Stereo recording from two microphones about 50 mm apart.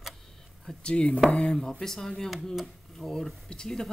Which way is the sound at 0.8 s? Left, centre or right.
Left.